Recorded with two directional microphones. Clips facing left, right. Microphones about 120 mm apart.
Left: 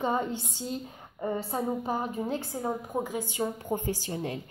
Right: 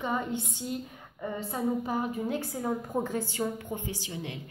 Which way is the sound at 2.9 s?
10° left (ahead or behind).